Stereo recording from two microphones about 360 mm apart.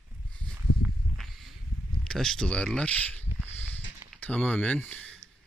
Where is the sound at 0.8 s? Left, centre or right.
Centre.